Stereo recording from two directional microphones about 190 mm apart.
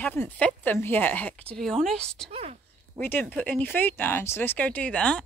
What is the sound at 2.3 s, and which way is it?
Whispering, 30° right (ahead or behind).